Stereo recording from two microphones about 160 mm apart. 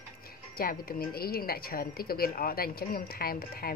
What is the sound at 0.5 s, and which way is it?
A woman's voice, 70° left (ahead or behind).